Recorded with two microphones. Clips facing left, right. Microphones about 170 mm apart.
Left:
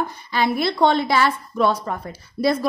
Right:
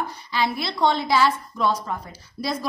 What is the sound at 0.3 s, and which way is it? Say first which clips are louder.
A woman's voice: left 5 dB; 55° left (ahead or behind).